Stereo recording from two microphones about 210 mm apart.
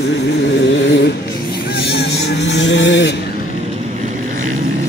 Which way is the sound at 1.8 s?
50° left (ahead or behind).